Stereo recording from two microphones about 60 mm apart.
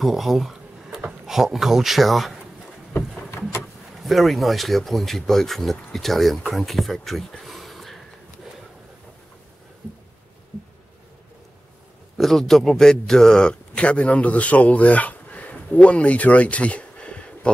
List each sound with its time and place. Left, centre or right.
0.0 s speech: centre
4.0 s speech: centre
12.2 s a man's voice: centre